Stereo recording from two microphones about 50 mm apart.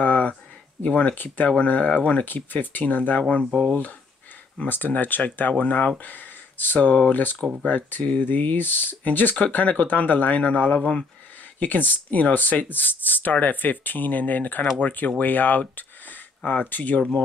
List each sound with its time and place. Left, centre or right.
0.0 s a sound: left
0.9 s speech: left
3.2 s speech: left
4.6 s speech: left
11.6 s speech: left